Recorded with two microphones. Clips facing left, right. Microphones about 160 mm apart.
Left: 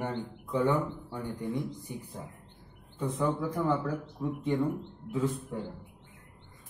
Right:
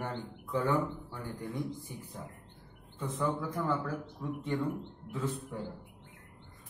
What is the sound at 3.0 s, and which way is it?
A man's voice, 15° left (ahead or behind).